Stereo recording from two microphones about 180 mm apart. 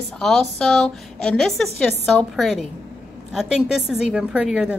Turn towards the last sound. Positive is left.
turn(degrees=-5)  # may be behind; listen again after turning